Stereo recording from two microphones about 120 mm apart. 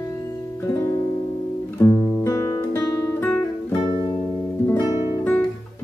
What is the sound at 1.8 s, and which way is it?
Guitar, 20° left (ahead or behind).